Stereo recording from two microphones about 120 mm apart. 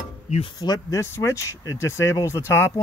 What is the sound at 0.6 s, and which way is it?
Speech, 30° left (ahead or behind).